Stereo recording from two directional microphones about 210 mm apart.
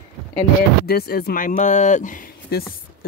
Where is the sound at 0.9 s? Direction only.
50° left (ahead or behind).